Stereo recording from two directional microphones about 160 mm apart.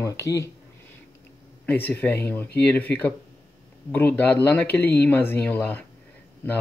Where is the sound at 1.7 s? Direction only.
10° left (ahead or behind).